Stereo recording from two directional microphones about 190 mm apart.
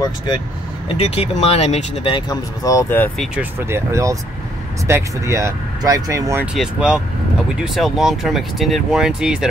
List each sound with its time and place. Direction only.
0.9 s speech: 35° left (ahead or behind); by 3.3 s 10° left (ahead or behind)
3.3 s speech: 10° right (ahead or behind)
6.5 s speech: 5° right (ahead or behind)